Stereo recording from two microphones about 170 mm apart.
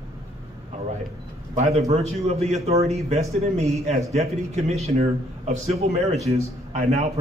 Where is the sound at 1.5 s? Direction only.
40° right (ahead or behind).